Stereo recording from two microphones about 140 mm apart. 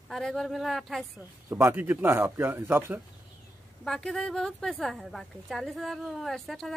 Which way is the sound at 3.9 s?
5° left (ahead or behind).